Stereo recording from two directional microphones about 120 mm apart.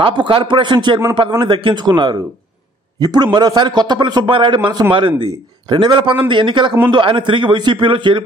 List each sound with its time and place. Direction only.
0.0 s a man's voice: 45° right (ahead or behind)